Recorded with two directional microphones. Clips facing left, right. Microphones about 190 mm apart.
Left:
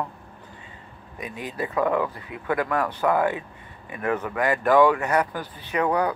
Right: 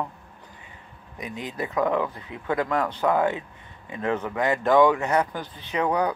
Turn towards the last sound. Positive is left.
turn(degrees=-15)  # may be behind; listen again after turning